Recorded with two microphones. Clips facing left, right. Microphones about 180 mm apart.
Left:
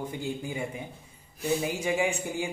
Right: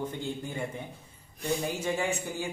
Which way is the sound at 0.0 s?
10° left (ahead or behind).